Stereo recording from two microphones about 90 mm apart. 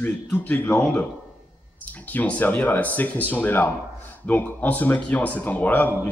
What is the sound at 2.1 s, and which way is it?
A man's voice, 15° left (ahead or behind).